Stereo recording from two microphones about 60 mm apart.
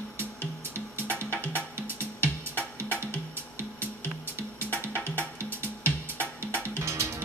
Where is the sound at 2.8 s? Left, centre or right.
Right.